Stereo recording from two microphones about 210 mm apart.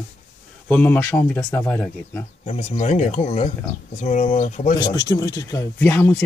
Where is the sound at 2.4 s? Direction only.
30° left (ahead or behind).